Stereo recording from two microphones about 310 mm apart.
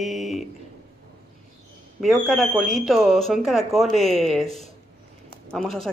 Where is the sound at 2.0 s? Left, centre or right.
Centre.